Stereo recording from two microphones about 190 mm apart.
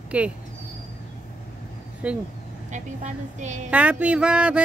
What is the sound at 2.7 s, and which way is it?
A woman's voice, 40° right (ahead or behind).